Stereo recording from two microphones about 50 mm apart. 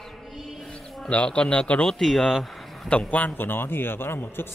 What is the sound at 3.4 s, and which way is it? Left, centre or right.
Speech, left.